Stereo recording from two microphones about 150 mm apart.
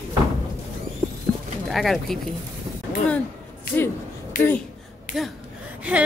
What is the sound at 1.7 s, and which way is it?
Speech, centre (ahead or behind).